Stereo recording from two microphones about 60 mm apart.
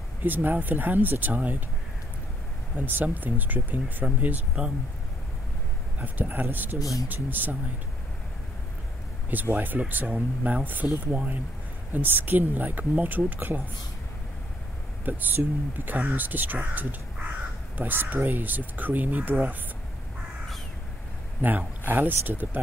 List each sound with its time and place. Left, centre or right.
0.2 s speech: right
2.8 s speech: right
5.9 s speech: right
6.8 s speech: left
7.2 s speech: right
9.3 s speech: right
15.0 s speech: right
17.7 s speech: right
21.4 s speech: right